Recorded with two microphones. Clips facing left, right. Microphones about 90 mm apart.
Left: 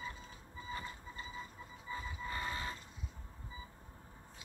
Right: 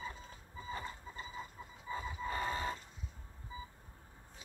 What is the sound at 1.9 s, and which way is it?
Vehicle, 30° right (ahead or behind).